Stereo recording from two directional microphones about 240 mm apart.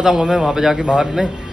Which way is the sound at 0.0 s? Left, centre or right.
Centre.